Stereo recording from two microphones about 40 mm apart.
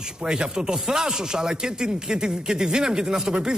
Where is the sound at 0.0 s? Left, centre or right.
Centre.